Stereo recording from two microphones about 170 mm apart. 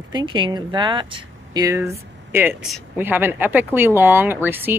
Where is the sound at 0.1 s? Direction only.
25° right (ahead or behind).